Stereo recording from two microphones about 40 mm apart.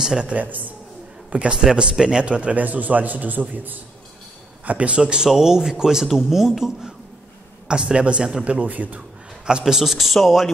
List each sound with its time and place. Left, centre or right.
0.2 s a man's voice: right
1.6 s a man's voice: right
2.6 s a man's voice: right
4.6 s speech: right; by 6.5 s centre
7.6 s a man's voice: right
8.5 s a man's voice: right
9.5 s speech: centre
9.8 s speech: centre